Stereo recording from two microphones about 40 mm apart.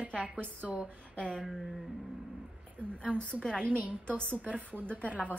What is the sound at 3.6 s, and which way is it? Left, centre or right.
Speech, right.